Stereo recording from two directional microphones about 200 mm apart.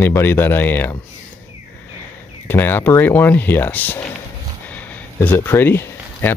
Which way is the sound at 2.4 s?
10° left (ahead or behind).